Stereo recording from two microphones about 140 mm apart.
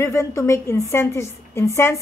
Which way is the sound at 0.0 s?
20° left (ahead or behind).